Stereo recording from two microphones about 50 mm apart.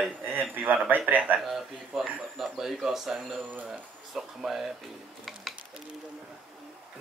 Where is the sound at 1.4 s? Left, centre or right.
Centre.